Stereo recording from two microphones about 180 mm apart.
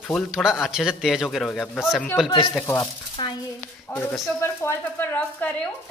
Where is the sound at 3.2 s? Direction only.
25° left (ahead or behind).